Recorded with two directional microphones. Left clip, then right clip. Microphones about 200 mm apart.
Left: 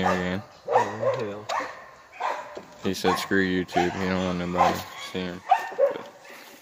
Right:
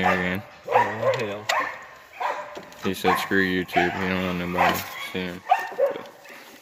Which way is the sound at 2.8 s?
5° left (ahead or behind).